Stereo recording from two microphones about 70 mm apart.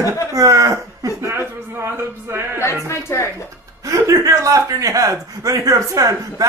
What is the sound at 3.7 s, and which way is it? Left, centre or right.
A man's voice, right.